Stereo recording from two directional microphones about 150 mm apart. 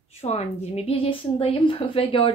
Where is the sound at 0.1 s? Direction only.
45° left (ahead or behind).